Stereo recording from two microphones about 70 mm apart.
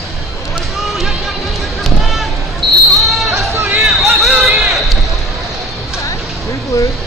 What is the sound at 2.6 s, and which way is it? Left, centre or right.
Basketball bounce, right.